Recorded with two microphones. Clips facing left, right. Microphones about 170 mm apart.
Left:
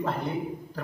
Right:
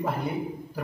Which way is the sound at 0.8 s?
10° right (ahead or behind).